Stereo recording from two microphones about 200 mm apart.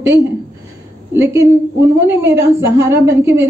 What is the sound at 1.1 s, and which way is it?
A woman's voice, 15° right (ahead or behind).